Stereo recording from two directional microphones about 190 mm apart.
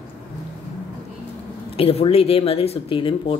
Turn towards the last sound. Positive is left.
turn(degrees=25)  # may be behind; listen again after turning